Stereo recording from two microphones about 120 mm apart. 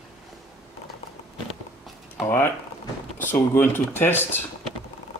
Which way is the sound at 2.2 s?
20° left (ahead or behind).